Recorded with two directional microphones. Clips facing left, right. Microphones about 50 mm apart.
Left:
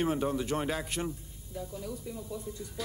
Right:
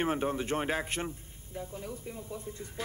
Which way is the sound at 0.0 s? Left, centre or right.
Right.